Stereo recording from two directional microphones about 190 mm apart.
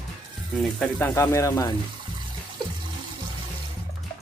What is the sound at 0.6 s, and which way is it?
Speech, 5° left (ahead or behind).